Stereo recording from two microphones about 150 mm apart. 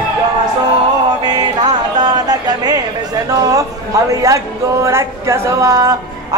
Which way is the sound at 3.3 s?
25° right (ahead or behind).